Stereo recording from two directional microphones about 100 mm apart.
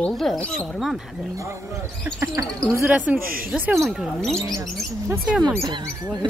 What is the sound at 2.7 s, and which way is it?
Speech, 15° right (ahead or behind).